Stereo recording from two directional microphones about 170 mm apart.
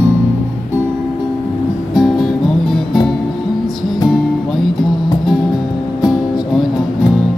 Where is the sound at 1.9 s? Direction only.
Centre (ahead or behind).